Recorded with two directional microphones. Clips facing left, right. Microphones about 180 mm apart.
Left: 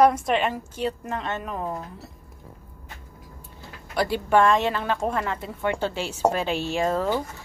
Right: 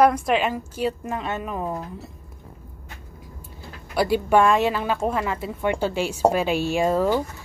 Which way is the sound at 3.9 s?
10° right (ahead or behind).